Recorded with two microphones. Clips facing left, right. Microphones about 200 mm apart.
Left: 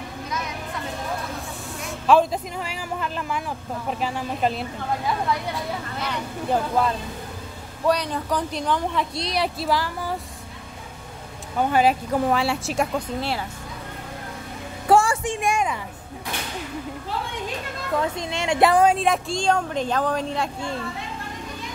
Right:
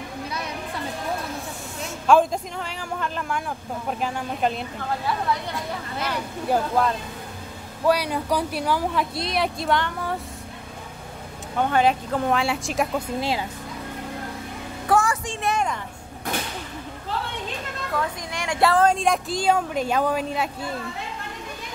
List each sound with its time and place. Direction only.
2.0 s a woman's voice: centre (ahead or behind)
6.0 s a woman's voice: 5° right (ahead or behind)
11.5 s a woman's voice: 5° left (ahead or behind)
13.2 s speech: 15° right (ahead or behind)
14.9 s vehicle: 25° left (ahead or behind)
15.3 s a sound: 10° left (ahead or behind)
17.9 s a woman's voice: 25° left (ahead or behind)
18.9 s speech: centre (ahead or behind)